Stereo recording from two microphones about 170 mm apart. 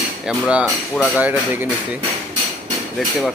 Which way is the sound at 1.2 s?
10° right (ahead or behind).